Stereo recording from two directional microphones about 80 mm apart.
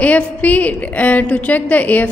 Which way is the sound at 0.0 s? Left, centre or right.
Centre.